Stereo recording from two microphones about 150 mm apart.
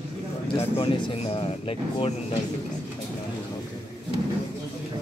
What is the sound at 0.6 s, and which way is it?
Speech, 40° left (ahead or behind).